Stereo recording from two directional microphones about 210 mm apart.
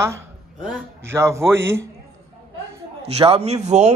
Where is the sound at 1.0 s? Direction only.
10° right (ahead or behind).